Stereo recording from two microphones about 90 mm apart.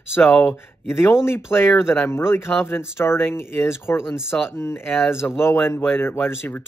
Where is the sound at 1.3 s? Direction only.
30° left (ahead or behind).